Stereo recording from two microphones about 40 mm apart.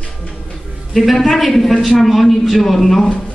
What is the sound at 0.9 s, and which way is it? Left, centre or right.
Speech, centre.